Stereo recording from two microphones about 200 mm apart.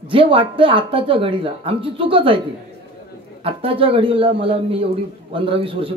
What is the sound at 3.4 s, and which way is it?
A man's voice, 25° right (ahead or behind).